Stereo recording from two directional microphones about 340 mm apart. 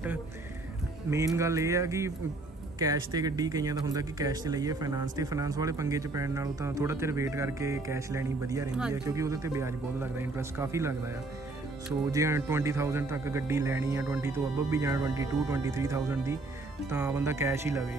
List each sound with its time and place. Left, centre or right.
1.1 s speech: centre
12.1 s speech: centre